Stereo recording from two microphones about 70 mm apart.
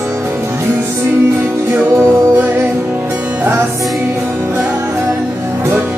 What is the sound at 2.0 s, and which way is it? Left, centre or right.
Music, right.